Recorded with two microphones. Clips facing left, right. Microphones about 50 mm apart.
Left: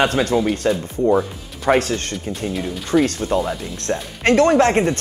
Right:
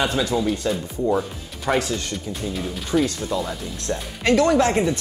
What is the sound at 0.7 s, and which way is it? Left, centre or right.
Speech, centre.